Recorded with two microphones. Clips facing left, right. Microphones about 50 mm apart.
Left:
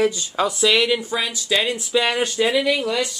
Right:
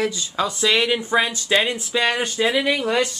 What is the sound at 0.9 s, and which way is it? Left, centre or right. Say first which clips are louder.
Speech: right 2 dB; right.